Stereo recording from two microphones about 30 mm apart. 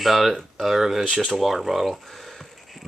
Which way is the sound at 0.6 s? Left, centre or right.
Centre.